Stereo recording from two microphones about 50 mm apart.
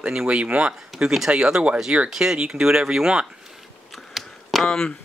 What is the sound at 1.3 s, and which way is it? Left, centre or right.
Speech, centre.